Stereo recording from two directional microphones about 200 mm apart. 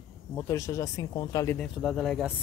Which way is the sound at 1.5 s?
Centre (ahead or behind).